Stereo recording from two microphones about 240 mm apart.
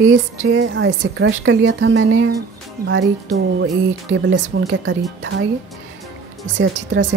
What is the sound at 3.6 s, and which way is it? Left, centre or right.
A woman's voice, right.